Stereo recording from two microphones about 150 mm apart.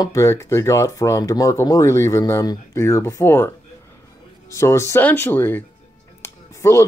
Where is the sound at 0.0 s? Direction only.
20° left (ahead or behind).